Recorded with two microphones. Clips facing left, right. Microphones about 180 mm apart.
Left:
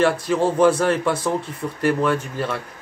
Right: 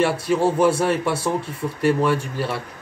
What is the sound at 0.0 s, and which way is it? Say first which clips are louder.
Speech: even; 25° right (ahead or behind).